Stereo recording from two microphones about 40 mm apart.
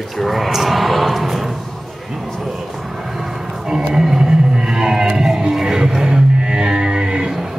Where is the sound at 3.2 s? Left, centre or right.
Centre.